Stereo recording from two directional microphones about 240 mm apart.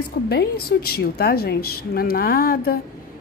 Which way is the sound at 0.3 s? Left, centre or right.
Left.